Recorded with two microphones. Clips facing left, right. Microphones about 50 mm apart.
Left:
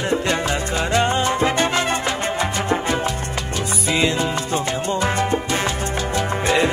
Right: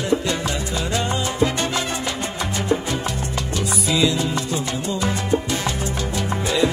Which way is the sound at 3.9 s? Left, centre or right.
Left.